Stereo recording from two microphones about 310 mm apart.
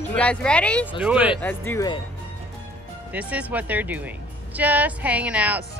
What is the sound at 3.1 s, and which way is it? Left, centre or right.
Speech, centre.